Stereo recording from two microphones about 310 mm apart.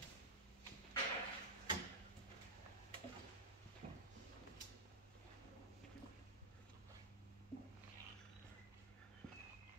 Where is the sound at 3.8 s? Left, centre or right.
Right.